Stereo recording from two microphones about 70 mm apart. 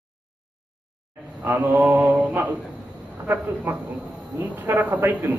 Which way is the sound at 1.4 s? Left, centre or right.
Right.